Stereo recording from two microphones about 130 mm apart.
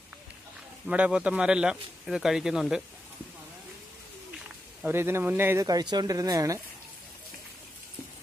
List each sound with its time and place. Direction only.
0.8 s speech: 10° right (ahead or behind)
4.8 s speech: 20° right (ahead or behind)
5.7 s speech: 30° right (ahead or behind)